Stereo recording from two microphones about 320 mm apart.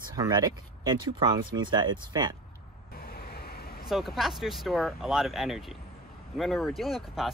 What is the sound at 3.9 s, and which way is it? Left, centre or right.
Speech, centre.